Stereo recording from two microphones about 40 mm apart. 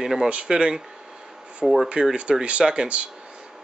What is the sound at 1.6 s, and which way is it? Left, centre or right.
Speech, centre.